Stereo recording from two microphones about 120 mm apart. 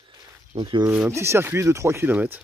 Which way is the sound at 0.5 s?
40° right (ahead or behind).